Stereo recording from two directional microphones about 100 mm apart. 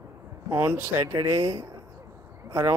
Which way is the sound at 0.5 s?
25° right (ahead or behind).